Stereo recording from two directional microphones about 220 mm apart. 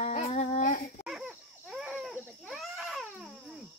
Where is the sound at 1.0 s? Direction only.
5° right (ahead or behind).